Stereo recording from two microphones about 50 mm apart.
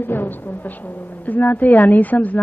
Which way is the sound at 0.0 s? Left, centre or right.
Left.